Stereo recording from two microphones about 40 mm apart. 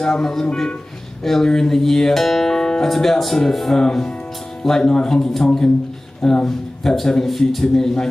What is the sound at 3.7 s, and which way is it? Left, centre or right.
Speech, centre.